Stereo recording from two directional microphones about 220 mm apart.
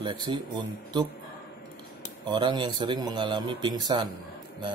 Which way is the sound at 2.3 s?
20° right (ahead or behind).